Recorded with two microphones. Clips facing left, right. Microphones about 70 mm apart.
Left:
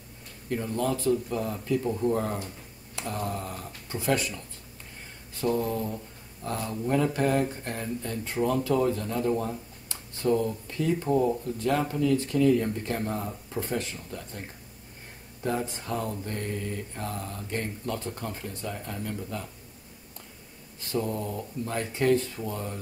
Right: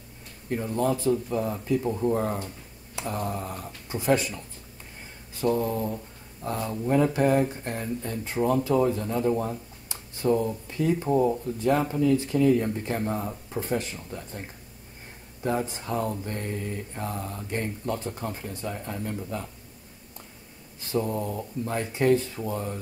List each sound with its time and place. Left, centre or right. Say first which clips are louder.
0.5 s a man's voice: right 2 dB; centre
5.5 s speech: right 2 dB; centre
14.1 s speech: right 1 dB; right
15.4 s speech: right 2 dB; centre
20.9 s speech: right 2 dB; centre